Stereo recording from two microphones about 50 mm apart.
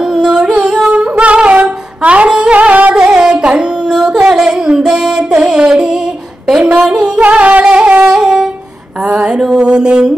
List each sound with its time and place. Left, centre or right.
0.0 s music: centre
3.1 s music: centre
7.2 s music: right
9.0 s a sound: centre
9.4 s music: centre